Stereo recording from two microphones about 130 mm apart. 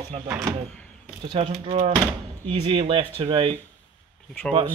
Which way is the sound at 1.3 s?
40° right (ahead or behind).